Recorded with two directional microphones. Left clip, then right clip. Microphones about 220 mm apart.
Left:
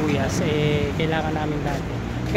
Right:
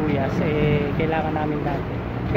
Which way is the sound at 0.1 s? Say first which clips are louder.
Even; 15° left (ahead or behind).